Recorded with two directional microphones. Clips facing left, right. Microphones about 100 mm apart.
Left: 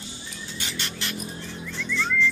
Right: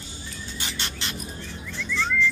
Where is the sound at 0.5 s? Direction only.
30° right (ahead or behind).